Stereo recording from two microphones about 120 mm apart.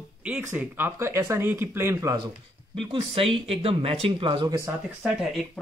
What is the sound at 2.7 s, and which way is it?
Speech, 50° right (ahead or behind).